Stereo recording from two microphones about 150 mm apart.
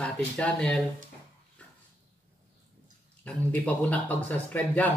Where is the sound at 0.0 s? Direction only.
5° left (ahead or behind).